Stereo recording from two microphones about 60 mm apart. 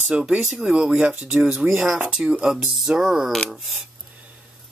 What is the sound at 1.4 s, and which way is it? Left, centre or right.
Speech, centre.